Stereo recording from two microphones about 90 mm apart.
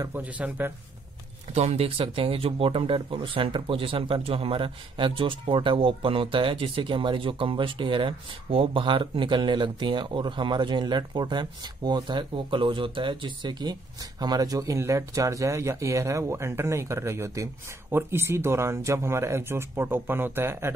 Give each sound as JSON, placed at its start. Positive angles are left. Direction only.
{"t": 0.1, "sound": "speech", "side_deg": -20}
{"t": 1.8, "sound": "speech", "side_deg": -90}